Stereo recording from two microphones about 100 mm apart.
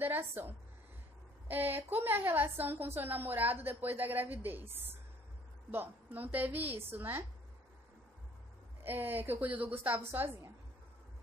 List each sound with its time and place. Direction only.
0.0 s a woman's voice: 20° right (ahead or behind)
8.8 s a woman's voice: 20° right (ahead or behind)